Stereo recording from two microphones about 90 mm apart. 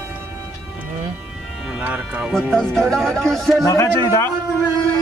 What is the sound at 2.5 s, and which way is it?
Speech, 5° left (ahead or behind).